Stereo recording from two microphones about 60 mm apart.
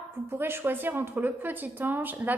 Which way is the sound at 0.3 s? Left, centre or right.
Right.